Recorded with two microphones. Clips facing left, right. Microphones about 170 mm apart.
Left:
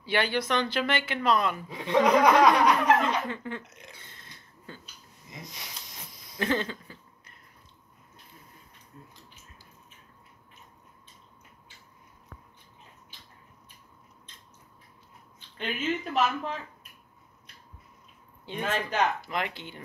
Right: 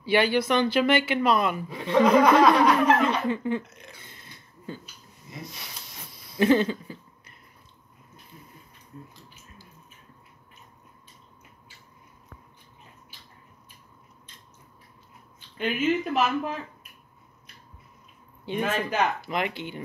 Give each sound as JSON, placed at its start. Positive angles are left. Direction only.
{"t": 0.0, "sound": "speech", "side_deg": -10}
{"t": 1.7, "sound": "speech", "side_deg": 15}
{"t": 3.3, "sound": "speech", "side_deg": -15}
{"t": 4.0, "sound": "burping", "side_deg": -10}
{"t": 5.3, "sound": "speech", "side_deg": 15}
{"t": 6.4, "sound": "speech", "side_deg": -10}
{"t": 15.5, "sound": "speech", "side_deg": -10}
{"t": 18.4, "sound": "speech", "side_deg": -10}
{"t": 19.2, "sound": "speech", "side_deg": -15}